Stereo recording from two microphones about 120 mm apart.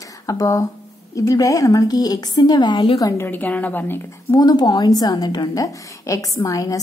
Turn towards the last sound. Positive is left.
turn(degrees=30)  # may be behind; listen again after turning